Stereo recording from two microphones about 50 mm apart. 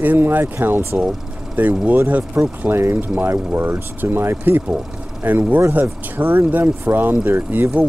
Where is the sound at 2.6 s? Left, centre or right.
Right.